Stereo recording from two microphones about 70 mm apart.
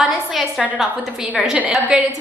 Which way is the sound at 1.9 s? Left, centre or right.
Centre.